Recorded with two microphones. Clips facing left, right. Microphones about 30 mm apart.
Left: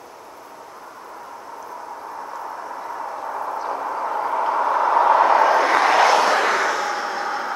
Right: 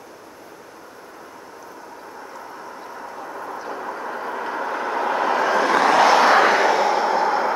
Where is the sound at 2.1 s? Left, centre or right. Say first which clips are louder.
Left 5 dB; centre.